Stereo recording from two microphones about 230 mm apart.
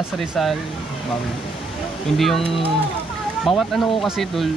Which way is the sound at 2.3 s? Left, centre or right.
Left.